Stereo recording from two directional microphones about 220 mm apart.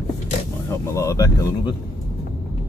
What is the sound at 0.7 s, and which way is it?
Speech, 15° left (ahead or behind).